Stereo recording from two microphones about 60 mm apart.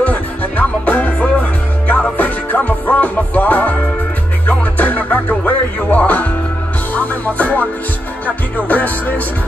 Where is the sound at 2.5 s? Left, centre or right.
Left.